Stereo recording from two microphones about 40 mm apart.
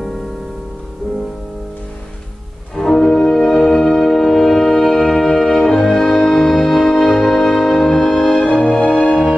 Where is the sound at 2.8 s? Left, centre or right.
Centre.